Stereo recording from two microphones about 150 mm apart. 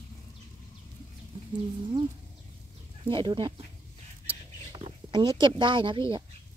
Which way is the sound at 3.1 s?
30° right (ahead or behind).